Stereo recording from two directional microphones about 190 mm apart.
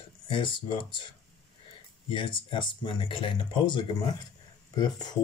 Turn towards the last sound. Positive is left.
turn(degrees=20)  # may be behind; listen again after turning